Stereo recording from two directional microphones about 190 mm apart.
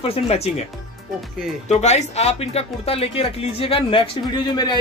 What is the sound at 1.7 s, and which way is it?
Speech, 35° left (ahead or behind).